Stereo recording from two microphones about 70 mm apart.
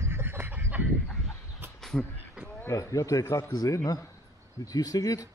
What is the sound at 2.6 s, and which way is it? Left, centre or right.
Speech, left.